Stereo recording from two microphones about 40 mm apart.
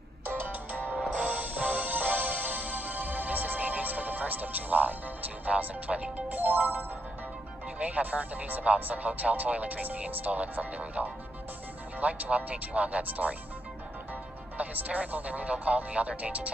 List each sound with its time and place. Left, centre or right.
0.3 s music: right
0.7 s music: right
5.4 s speech: right
6.3 s music: right
7.8 s speech: right
14.6 s speech: right